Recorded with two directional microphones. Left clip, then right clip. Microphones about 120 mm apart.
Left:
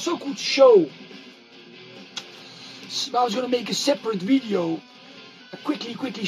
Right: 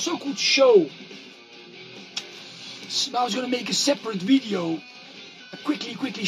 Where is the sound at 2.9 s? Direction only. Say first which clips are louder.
Left 2 dB; centre (ahead or behind).